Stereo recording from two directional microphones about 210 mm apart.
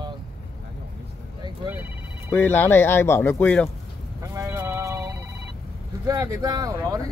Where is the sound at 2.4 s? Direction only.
10° left (ahead or behind).